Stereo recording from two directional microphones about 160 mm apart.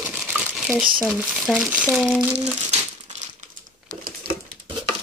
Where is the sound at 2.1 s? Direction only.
5° right (ahead or behind).